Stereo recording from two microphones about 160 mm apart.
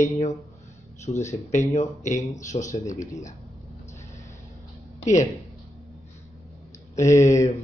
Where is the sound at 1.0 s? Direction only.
45° left (ahead or behind).